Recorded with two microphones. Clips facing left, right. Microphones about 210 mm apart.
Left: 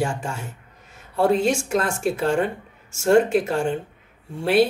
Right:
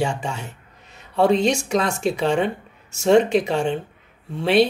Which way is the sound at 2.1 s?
70° right (ahead or behind).